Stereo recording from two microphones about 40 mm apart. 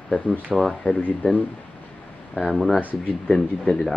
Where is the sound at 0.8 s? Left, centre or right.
Left.